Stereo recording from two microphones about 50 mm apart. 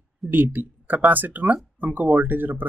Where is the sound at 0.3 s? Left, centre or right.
Right.